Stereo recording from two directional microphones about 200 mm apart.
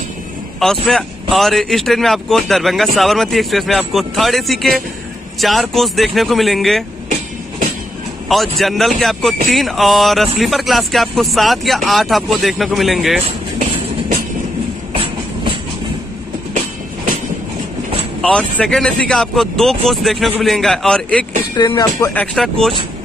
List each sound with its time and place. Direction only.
0.6 s speech: centre (ahead or behind)
8.3 s speech: centre (ahead or behind)
13.6 s music: 40° right (ahead or behind)
14.9 s train: 30° right (ahead or behind)
16.5 s train: 35° right (ahead or behind)
18.2 s speech: 5° left (ahead or behind)
21.5 s speech: 20° left (ahead or behind)
22.1 s speech: 5° left (ahead or behind)